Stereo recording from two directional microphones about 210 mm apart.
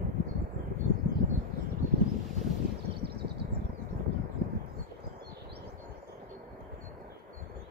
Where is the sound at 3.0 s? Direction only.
50° right (ahead or behind).